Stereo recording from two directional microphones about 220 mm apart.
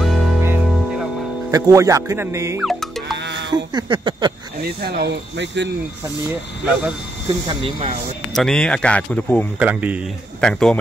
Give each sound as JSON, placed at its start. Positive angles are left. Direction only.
{"t": 0.0, "sound": "music", "side_deg": 0}
{"t": 1.5, "sound": "speech", "side_deg": -15}
{"t": 2.6, "sound": "music", "side_deg": 0}
{"t": 3.2, "sound": "music", "side_deg": -50}
{"t": 3.5, "sound": "speech", "side_deg": -20}
{"t": 4.6, "sound": "speech", "side_deg": -45}
{"t": 7.4, "sound": "speech", "side_deg": -25}
{"t": 8.4, "sound": "a man's voice", "side_deg": 5}
{"t": 9.6, "sound": "a man's voice", "side_deg": -5}